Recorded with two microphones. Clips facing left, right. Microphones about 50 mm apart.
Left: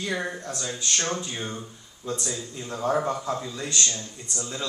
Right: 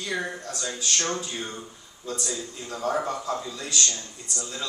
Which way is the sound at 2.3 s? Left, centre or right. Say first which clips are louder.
Even; centre.